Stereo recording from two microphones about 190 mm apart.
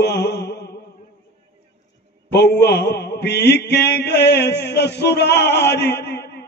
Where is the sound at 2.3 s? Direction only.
60° left (ahead or behind).